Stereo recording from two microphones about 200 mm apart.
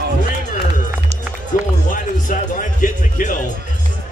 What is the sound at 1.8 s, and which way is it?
Music, 40° left (ahead or behind).